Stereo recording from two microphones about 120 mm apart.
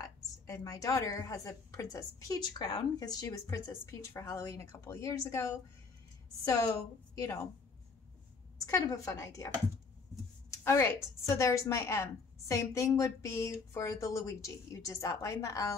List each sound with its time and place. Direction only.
0.0 s a woman's voice: 30° left (ahead or behind)
8.6 s a woman's voice: 30° left (ahead or behind)
10.5 s a woman's voice: 25° left (ahead or behind)